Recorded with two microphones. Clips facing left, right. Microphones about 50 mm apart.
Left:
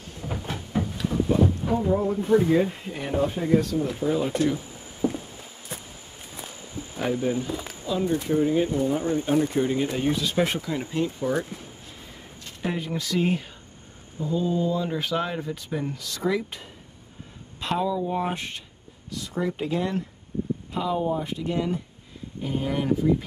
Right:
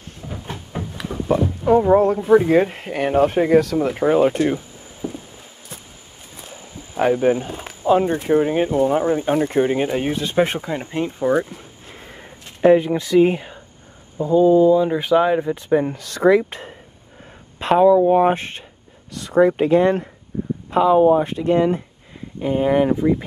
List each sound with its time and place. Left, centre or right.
1.1 s music: right
1.6 s boat: right
1.9 s speech: right
5.0 s walk: centre
7.0 s speech: right
12.6 s speech: right
19.1 s speech: right